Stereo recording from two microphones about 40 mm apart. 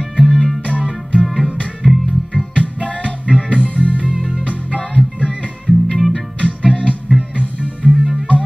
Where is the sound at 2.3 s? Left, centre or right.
Left.